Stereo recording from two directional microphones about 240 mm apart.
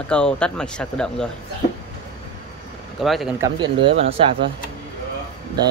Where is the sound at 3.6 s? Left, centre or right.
Right.